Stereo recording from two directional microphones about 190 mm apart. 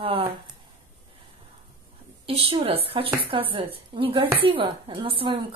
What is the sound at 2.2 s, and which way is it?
Female singing, 30° right (ahead or behind).